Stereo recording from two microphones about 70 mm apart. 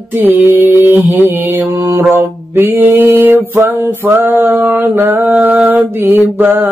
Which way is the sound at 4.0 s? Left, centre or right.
Right.